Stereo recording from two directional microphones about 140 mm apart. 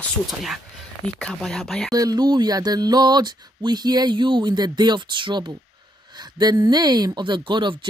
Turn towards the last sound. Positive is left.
turn(degrees=-35)  # may be behind; listen again after turning